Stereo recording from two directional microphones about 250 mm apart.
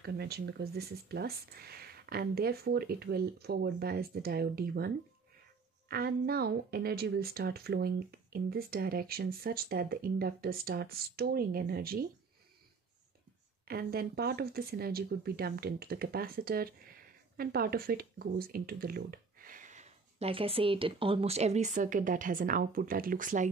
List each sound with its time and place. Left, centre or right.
0.0 s speech: right
13.7 s speech: right